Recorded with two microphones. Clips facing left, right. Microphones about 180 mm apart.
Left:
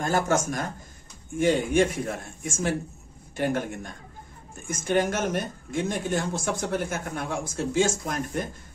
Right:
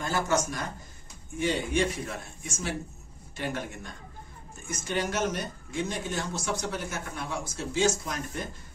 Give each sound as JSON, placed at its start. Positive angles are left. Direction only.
{"t": 0.0, "sound": "speech", "side_deg": 50}